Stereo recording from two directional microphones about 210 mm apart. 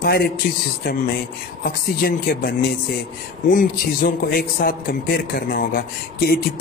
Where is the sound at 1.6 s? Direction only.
45° left (ahead or behind).